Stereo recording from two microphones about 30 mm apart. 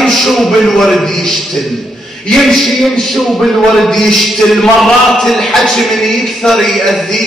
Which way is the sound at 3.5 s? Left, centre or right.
Centre.